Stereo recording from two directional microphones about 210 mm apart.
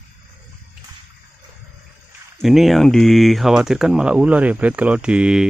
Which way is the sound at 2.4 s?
Centre (ahead or behind).